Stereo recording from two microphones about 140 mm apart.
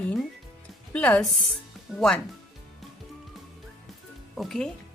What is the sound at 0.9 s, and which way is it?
Speech, 5° left (ahead or behind).